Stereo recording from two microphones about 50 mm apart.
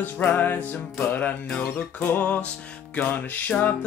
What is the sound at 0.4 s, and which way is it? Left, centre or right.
Music, left.